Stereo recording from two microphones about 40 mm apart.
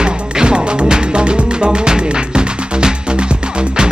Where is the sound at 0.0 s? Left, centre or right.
Centre.